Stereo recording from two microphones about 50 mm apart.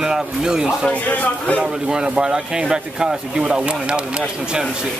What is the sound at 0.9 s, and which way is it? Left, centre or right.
Speech, left.